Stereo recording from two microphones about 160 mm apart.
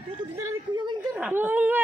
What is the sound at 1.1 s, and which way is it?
Speech, 10° right (ahead or behind).